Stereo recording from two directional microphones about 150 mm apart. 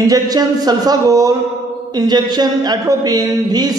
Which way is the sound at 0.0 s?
25° right (ahead or behind).